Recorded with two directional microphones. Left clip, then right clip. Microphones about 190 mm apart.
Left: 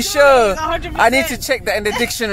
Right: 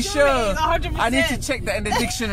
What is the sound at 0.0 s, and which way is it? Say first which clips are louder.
Speech: left 8 dB; 25° left (ahead or behind).